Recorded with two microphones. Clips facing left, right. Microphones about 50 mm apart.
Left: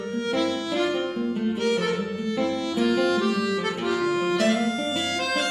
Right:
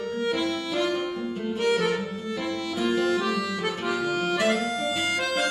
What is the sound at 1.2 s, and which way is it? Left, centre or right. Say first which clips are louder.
Music: left 4 dB; centre.